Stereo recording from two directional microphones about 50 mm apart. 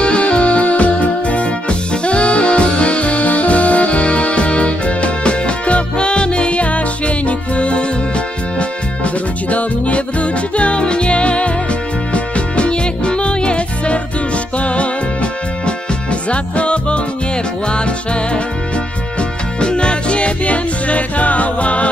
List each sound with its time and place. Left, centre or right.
0.0 s music: left
19.6 s music: centre